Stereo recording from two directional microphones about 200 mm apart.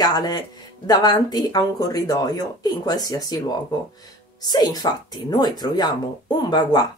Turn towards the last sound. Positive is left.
turn(degrees=20)  # may be behind; listen again after turning